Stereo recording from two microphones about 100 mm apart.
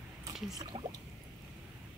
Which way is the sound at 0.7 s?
55° right (ahead or behind).